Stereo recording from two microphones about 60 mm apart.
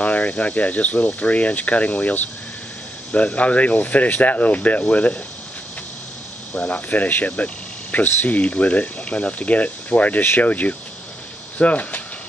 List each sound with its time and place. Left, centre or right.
0.0 s speech: left
6.5 s speech: left